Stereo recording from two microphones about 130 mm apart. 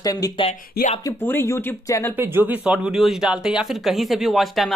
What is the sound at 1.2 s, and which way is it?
Speech, 20° left (ahead or behind).